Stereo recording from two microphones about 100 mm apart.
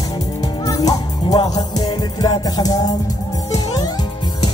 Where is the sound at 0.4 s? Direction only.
40° left (ahead or behind).